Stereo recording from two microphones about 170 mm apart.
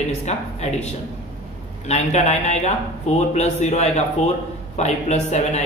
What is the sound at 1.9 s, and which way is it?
Speech, 40° left (ahead or behind).